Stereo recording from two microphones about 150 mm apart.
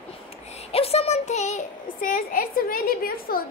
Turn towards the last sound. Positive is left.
turn(degrees=75)  # may be behind; listen again after turning